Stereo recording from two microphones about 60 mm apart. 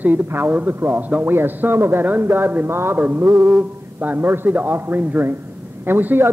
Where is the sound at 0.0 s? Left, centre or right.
Right.